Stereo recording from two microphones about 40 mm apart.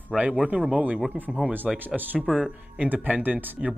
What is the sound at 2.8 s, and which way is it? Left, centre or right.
Speech, right.